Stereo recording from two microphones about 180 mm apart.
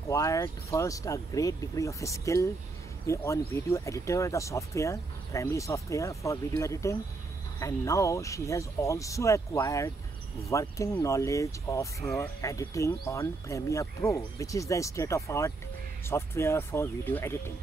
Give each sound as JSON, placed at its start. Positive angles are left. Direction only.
{"t": 0.1, "sound": "speech", "side_deg": 20}